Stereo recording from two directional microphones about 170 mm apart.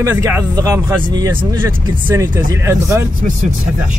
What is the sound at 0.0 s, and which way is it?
Speech, 15° right (ahead or behind).